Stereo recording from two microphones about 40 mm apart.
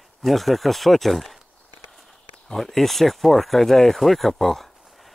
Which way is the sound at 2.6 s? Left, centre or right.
Centre.